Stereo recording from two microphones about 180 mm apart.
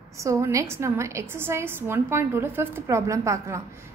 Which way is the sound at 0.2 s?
15° right (ahead or behind).